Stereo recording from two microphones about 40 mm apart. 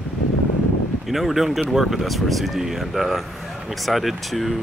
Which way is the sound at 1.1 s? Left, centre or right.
Centre.